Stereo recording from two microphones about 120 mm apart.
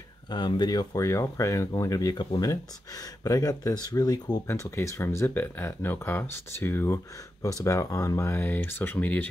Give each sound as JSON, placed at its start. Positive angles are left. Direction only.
{"t": 0.3, "sound": "speech", "side_deg": 40}